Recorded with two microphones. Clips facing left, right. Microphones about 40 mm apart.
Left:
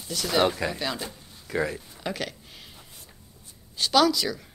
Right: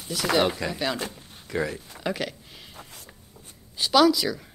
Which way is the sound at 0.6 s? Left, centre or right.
Centre.